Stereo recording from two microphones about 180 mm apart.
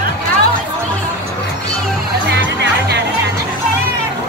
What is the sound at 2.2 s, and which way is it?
Music, 65° right (ahead or behind).